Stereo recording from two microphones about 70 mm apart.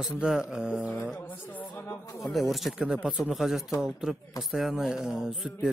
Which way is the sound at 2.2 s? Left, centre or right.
Centre.